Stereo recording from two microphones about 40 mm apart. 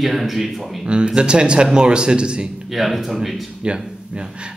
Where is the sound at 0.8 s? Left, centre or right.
Right.